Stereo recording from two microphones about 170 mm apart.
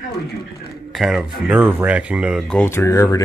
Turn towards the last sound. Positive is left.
turn(degrees=20)  # may be behind; listen again after turning